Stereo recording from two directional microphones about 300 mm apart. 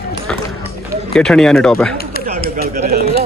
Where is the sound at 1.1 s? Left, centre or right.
Centre.